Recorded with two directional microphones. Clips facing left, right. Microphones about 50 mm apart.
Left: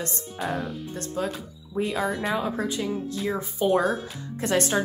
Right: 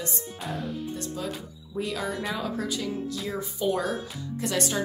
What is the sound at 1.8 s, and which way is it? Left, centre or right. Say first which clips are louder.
A woman's voice: left 4 dB; left.